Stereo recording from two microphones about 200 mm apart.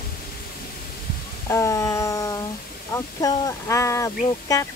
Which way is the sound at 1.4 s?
15° left (ahead or behind).